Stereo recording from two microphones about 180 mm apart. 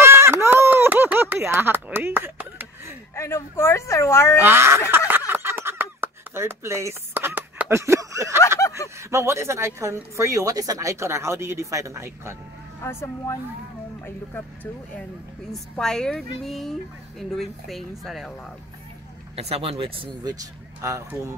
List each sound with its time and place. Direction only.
0.0 s a sound: 15° right (ahead or behind)
3.2 s speech: 15° left (ahead or behind)
4.4 s speech: 15° right (ahead or behind)
5.3 s a sound: 15° right (ahead or behind)
9.1 s speech: 15° right (ahead or behind)
12.8 s speech: 15° left (ahead or behind); by 18.3 s centre (ahead or behind)
19.3 s speech: 35° right (ahead or behind); by 21.4 s 15° right (ahead or behind)